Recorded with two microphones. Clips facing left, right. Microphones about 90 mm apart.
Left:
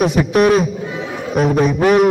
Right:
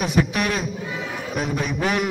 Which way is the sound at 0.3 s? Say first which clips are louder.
Left 12 dB; 45° left (ahead or behind).